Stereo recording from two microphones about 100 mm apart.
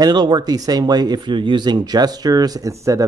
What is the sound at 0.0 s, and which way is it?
Speech, 45° right (ahead or behind).